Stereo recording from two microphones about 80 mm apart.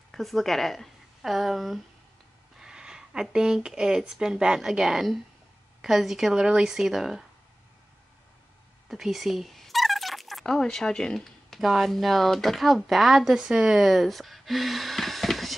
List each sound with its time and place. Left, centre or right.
0.1 s speech: centre
8.8 s speech: centre